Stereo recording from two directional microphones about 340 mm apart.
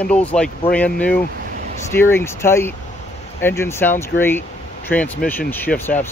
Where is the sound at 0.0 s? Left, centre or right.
Centre.